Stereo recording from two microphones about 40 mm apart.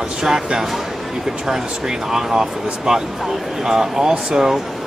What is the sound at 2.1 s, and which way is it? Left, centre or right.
Speech, centre.